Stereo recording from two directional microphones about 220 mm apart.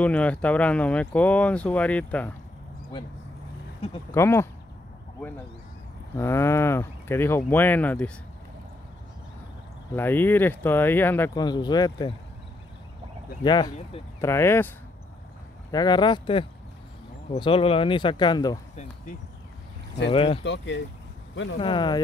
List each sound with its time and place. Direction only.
0.0 s speech: 5° left (ahead or behind)
4.1 s speech: 10° left (ahead or behind)
6.1 s speech: 10° left (ahead or behind)
9.9 s speech: 10° left (ahead or behind)
13.4 s speech: 20° left (ahead or behind)
15.7 s speech: 20° left (ahead or behind)
20.1 s speech: 25° left (ahead or behind)
20.4 s speech: 55° left (ahead or behind)
21.5 s speech: 20° left (ahead or behind)